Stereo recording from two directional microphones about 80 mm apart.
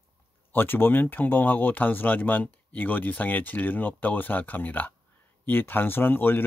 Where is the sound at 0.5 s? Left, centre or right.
Left.